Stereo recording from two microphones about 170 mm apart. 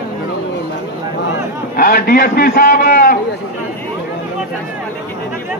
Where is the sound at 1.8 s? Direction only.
60° left (ahead or behind).